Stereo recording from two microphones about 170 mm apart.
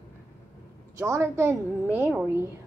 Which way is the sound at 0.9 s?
15° right (ahead or behind).